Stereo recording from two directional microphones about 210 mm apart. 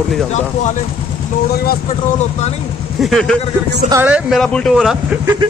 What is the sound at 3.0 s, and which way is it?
Speech, 5° left (ahead or behind).